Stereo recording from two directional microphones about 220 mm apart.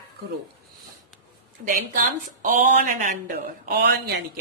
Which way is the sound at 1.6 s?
40° right (ahead or behind).